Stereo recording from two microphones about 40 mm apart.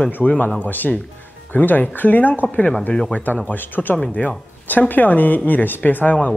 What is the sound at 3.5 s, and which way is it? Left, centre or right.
Speech, left.